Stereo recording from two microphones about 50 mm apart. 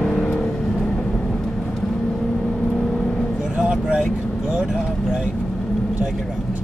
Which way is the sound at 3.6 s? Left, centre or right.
Centre.